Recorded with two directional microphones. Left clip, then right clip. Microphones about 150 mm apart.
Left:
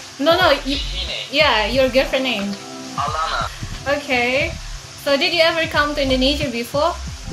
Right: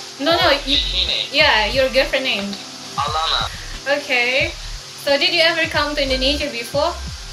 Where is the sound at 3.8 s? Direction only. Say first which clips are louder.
Right 1 dB; 55° left (ahead or behind).